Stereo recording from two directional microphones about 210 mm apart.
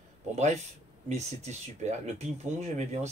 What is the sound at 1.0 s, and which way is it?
Speech, 35° right (ahead or behind).